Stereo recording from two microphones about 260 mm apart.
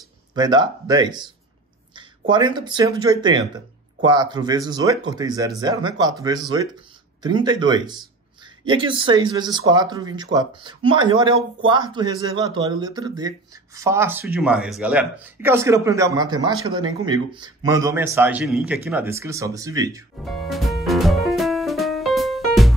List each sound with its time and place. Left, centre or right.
0.3 s speech: centre
20.2 s music: centre